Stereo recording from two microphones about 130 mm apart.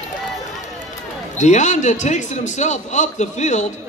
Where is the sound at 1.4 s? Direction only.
65° left (ahead or behind).